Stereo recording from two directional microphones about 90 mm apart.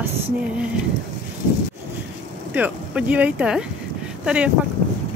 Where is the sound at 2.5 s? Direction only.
15° right (ahead or behind).